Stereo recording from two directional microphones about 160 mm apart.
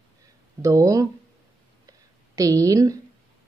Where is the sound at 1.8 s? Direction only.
20° right (ahead or behind).